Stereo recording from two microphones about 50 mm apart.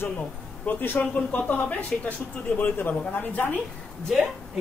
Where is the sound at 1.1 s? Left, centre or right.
Left.